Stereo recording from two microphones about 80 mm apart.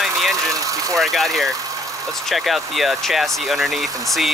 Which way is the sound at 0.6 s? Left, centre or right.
Right.